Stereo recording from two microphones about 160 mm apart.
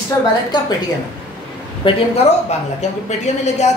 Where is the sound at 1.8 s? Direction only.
30° left (ahead or behind).